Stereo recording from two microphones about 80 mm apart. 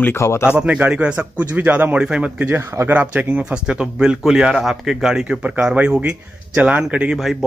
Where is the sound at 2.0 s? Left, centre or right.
Centre.